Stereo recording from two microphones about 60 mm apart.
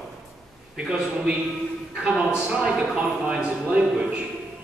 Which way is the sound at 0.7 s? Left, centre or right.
Centre.